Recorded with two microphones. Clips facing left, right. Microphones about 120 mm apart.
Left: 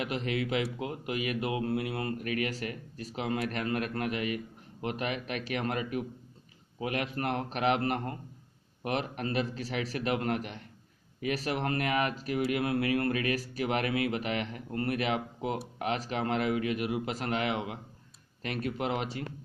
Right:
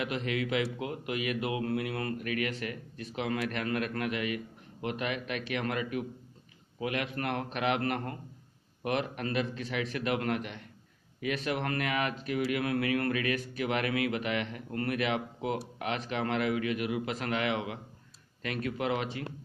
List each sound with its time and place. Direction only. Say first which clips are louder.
0.0 s speech: even; 35° left (ahead or behind)
1.4 s mantra: left 1 dB; 30° left (ahead or behind)
2.1 s speech: left 1 dB; 35° left (ahead or behind)